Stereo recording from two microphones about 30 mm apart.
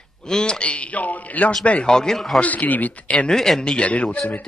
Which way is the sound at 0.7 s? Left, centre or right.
Left.